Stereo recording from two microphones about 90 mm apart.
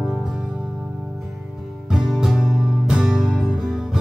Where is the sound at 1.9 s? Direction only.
5° right (ahead or behind).